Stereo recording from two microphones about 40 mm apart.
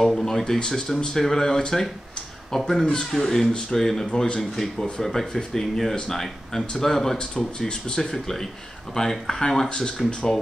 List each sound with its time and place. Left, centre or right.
0.1 s speech: centre
3.0 s speech: centre
4.7 s speech: left
5.0 s speech: centre
7.3 s speech: left
8.0 s speech: centre